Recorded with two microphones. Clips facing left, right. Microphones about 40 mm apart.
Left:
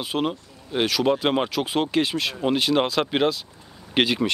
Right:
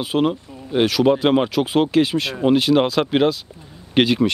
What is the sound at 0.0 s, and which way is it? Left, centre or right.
Speech, centre.